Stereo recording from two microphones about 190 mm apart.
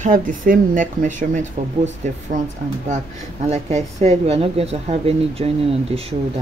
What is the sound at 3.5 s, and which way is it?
A woman's voice, 35° right (ahead or behind).